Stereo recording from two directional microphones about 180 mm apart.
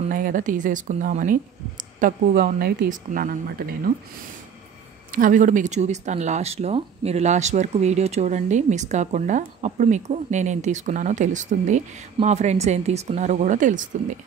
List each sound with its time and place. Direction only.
0.1 s speech: 50° right (ahead or behind)
5.1 s speech: 45° right (ahead or behind)